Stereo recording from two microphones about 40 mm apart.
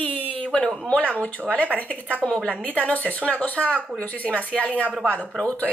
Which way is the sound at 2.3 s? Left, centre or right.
Left.